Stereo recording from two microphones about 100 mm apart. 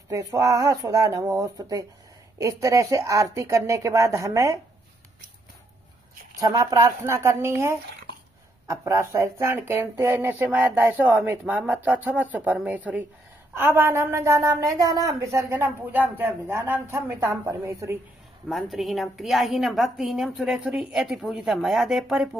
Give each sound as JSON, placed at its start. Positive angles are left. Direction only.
{"t": 0.1, "sound": "speech", "side_deg": -35}
{"t": 6.3, "sound": "speech", "side_deg": -40}
{"t": 7.1, "sound": "a woman's voice", "side_deg": -25}
{"t": 18.5, "sound": "a woman's voice", "side_deg": 0}